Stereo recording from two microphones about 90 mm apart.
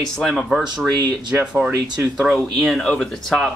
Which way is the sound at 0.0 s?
5° left (ahead or behind).